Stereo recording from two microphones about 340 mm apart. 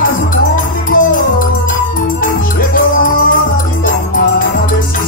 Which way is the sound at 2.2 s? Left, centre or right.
Left.